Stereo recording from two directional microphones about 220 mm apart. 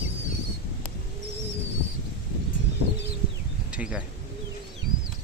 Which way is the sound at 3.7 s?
5° right (ahead or behind).